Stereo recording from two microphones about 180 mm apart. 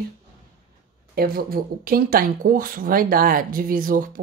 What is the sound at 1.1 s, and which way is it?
Speech, 55° right (ahead or behind).